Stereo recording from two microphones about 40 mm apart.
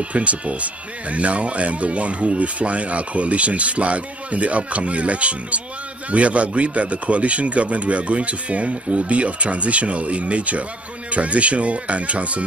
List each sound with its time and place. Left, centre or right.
0.1 s speech: right